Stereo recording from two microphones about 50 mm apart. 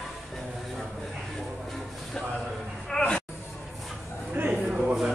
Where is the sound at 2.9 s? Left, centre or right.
Centre.